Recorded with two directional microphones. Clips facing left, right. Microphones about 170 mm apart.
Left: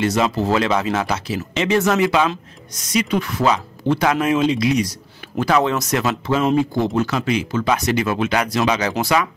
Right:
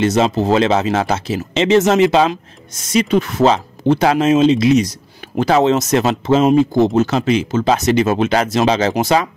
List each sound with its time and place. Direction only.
0.0 s speech: 20° right (ahead or behind)